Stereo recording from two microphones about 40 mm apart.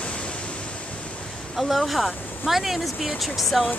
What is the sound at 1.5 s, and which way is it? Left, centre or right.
Speech, centre.